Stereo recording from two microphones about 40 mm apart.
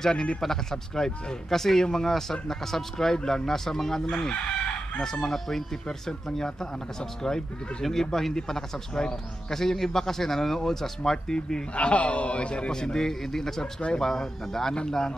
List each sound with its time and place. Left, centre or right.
0.0 s a man's voice: centre
3.2 s a man's voice: left
3.4 s a man's voice: centre
11.7 s a man's voice: left
12.7 s a man's voice: centre